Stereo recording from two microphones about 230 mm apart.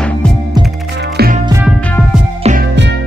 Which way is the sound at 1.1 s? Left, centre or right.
Right.